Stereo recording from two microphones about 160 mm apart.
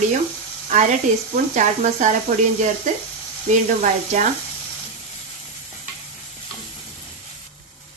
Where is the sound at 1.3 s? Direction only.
50° right (ahead or behind).